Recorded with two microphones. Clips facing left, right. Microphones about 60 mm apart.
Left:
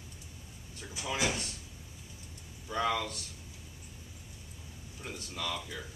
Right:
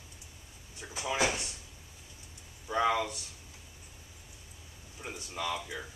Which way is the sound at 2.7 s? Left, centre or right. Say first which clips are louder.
Right 3 dB; centre.